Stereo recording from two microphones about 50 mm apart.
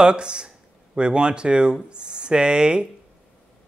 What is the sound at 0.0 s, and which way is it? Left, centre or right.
Speech, centre.